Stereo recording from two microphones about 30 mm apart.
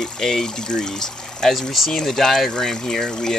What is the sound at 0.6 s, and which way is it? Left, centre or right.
Speech, left.